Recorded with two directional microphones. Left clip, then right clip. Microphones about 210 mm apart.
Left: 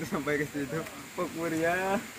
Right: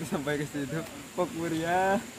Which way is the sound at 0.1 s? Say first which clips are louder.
Even; 55° right (ahead or behind).